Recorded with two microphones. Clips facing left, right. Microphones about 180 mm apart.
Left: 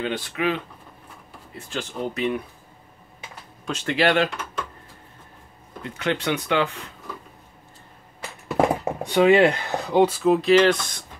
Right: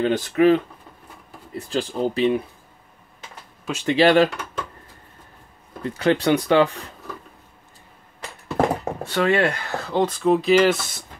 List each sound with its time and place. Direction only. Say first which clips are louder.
0.0 s speech: right 8 dB; 40° right (ahead or behind)
3.6 s speech: right 3 dB; 10° right (ahead or behind)
3.9 s speech: right 5 dB; 30° right (ahead or behind)
5.9 s speech: right 6 dB; 35° right (ahead or behind)
8.2 s speech: even; 15° left (ahead or behind); by 11.1 s 5° right (ahead or behind)